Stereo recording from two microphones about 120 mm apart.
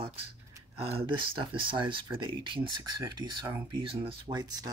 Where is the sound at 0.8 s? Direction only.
50° right (ahead or behind).